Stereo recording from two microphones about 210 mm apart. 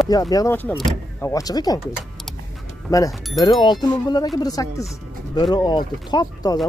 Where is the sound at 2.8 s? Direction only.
15° left (ahead or behind).